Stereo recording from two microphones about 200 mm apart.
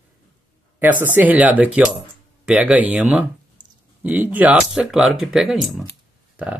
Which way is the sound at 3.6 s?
20° right (ahead or behind).